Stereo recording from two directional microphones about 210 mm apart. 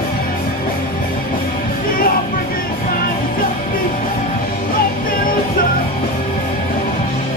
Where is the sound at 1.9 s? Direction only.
45° left (ahead or behind).